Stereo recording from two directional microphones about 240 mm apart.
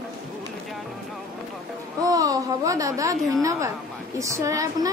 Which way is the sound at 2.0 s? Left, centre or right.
Centre.